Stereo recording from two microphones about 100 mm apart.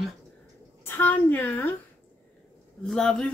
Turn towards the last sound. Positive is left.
turn(degrees=5)  # may be behind; listen again after turning